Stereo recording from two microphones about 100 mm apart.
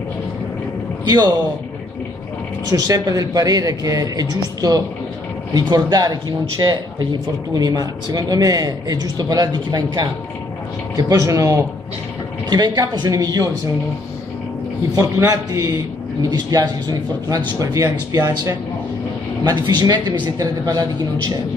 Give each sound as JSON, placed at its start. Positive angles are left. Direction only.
{"t": 1.0, "sound": "a man's voice", "side_deg": -45}
{"t": 2.7, "sound": "speech", "side_deg": -35}
{"t": 11.0, "sound": "speech", "side_deg": -35}
{"t": 15.0, "sound": "speech", "side_deg": -35}